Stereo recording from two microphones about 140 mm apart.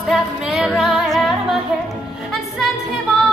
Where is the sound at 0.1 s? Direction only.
Centre (ahead or behind).